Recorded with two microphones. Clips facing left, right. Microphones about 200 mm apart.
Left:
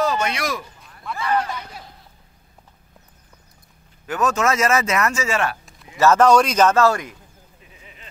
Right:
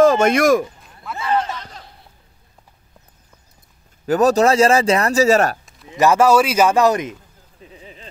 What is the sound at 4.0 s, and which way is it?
Speech, 35° right (ahead or behind).